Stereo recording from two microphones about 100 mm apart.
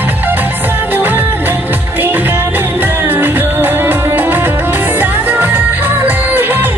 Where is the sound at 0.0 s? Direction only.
20° right (ahead or behind).